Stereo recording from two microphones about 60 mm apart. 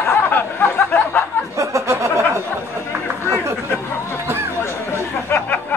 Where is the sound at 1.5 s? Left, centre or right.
Right.